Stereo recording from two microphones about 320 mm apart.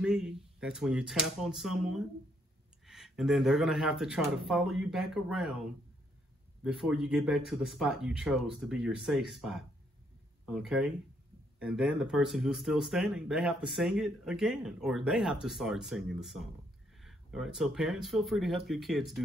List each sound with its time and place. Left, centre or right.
0.0 s speech: centre
6.6 s speech: centre